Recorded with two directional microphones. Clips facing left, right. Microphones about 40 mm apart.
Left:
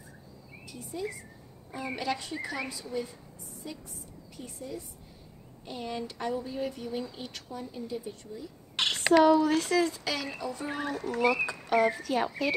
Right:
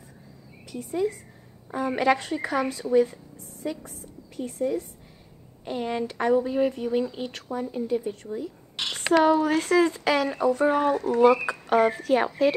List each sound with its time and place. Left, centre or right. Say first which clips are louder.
0.7 s speech: right 10 dB; right
5.7 s speech: right 8 dB; right